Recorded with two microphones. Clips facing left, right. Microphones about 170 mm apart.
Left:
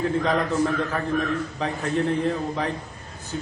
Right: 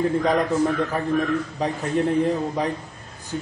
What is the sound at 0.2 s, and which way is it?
Speech, 15° right (ahead or behind).